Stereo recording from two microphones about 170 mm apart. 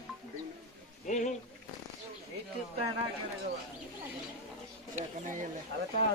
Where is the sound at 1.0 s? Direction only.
45° left (ahead or behind).